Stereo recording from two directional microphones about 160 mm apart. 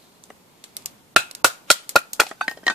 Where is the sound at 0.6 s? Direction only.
40° right (ahead or behind).